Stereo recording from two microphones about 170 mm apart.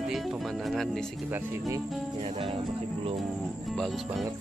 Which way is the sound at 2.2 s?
35° right (ahead or behind).